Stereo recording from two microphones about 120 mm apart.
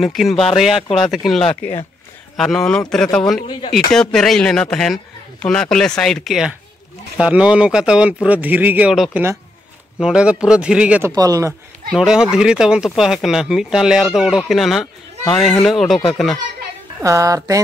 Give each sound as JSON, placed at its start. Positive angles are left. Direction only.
{"t": 0.0, "sound": "a man's voice", "side_deg": 0}
{"t": 9.9, "sound": "a man's voice", "side_deg": -5}
{"t": 11.1, "sound": "speech", "side_deg": -30}
{"t": 12.0, "sound": "speech", "side_deg": -5}
{"t": 17.0, "sound": "speech", "side_deg": -25}